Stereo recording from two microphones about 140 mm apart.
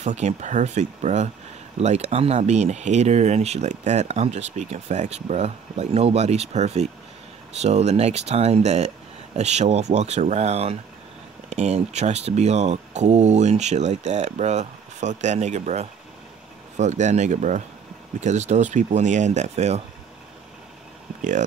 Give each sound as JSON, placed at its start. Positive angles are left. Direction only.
{"t": 0.0, "sound": "speech", "side_deg": -55}
{"t": 21.2, "sound": "speech", "side_deg": -65}